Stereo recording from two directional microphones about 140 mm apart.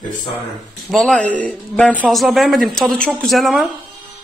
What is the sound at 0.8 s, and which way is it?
A woman's voice, centre (ahead or behind).